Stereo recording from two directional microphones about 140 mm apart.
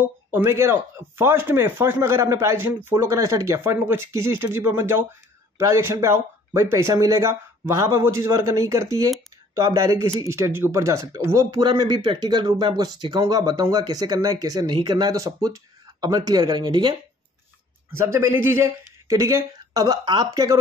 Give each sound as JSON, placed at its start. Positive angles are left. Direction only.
{"t": 0.0, "sound": "speech", "side_deg": -15}
{"t": 17.9, "sound": "speech", "side_deg": -20}